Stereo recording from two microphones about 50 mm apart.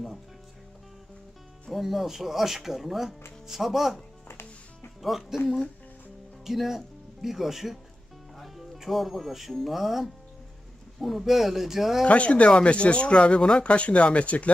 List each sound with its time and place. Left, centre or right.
1.7 s speech: centre
4.3 s music: left
5.0 s speech: centre
6.4 s speech: centre
12.1 s speech: left